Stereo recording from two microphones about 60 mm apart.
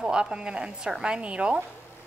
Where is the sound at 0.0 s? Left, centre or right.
Centre.